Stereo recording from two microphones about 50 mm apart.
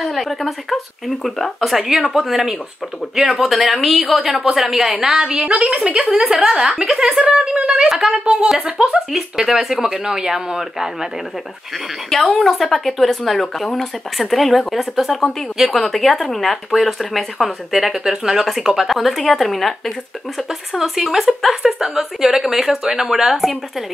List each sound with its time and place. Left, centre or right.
0.0 s speech: centre; by 9.0 s right
9.1 s speech: centre
12.1 s speech: centre